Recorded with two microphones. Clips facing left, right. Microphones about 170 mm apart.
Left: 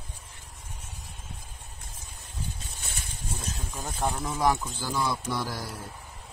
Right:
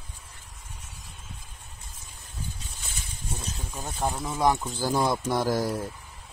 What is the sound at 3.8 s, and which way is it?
Speech, 5° right (ahead or behind).